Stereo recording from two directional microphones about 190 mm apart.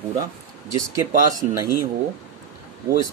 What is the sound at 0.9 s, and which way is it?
Speech, 20° right (ahead or behind).